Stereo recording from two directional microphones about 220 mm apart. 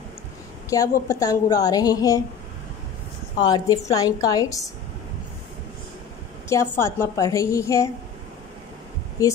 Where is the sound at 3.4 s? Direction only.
15° left (ahead or behind).